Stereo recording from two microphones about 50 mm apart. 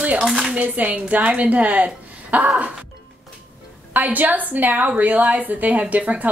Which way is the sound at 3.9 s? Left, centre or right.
Right.